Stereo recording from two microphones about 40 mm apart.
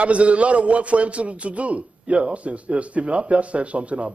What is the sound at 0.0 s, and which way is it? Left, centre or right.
Speech, right.